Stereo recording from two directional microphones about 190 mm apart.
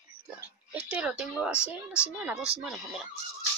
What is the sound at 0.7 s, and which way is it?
A woman's voice, 10° right (ahead or behind).